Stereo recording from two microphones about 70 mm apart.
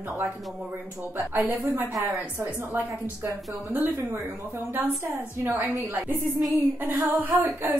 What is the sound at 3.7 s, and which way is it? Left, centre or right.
A woman's voice, right.